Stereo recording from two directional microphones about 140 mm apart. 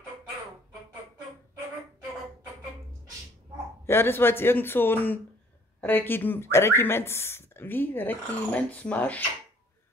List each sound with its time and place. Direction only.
3.8 s speech: 15° left (ahead or behind)